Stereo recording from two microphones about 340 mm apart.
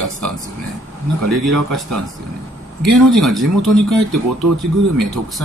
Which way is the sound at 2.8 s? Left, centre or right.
Centre.